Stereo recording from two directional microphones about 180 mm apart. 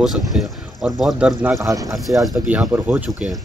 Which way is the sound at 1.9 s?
Centre (ahead or behind).